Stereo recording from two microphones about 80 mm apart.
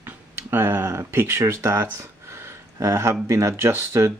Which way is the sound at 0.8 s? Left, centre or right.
Right.